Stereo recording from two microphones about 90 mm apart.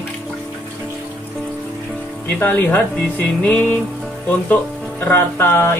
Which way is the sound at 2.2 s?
20° left (ahead or behind).